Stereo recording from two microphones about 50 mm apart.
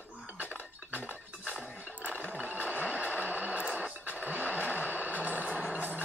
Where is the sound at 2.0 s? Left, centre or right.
Right.